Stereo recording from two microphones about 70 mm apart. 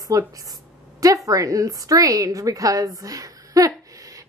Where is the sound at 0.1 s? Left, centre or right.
Right.